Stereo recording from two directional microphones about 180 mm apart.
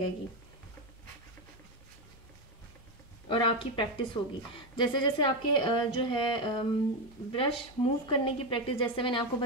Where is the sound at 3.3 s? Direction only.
30° left (ahead or behind).